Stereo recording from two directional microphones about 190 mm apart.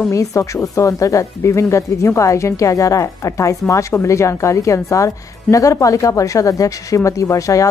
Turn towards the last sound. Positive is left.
turn(degrees=15)  # may be behind; listen again after turning